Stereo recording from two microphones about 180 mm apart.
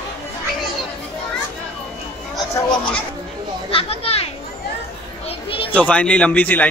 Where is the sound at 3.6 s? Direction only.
30° left (ahead or behind).